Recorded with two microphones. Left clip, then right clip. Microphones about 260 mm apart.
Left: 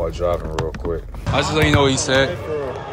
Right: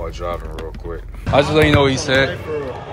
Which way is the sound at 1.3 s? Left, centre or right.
Centre.